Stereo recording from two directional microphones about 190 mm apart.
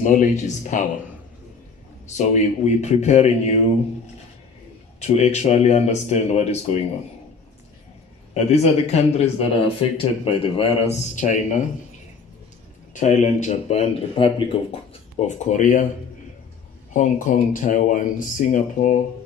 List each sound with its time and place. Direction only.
0.0 s speech: 40° left (ahead or behind)
2.1 s speech: 40° left (ahead or behind)
5.0 s speech: 35° left (ahead or behind)
8.5 s speech: 35° left (ahead or behind)
12.9 s speech: 40° left (ahead or behind)
16.9 s speech: 40° left (ahead or behind)